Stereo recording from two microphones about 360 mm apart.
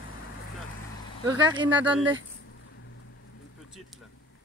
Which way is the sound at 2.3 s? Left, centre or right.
Left.